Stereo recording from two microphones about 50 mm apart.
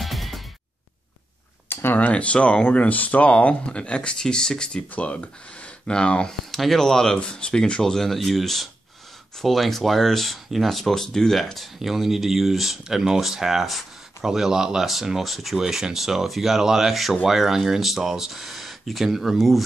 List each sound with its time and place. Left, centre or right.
0.0 s music: centre
1.7 s a sound: left
2.0 s speech: left
4.9 s speech: left
6.5 s speech: centre